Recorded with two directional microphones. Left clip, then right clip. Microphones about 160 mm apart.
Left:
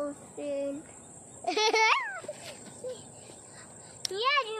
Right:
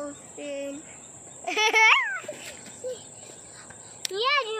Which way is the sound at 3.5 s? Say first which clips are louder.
Right 4 dB; 25° right (ahead or behind).